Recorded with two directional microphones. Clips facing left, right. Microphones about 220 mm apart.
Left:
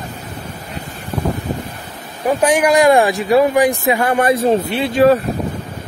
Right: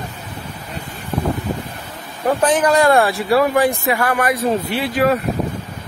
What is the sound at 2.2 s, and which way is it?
Speech, 15° left (ahead or behind).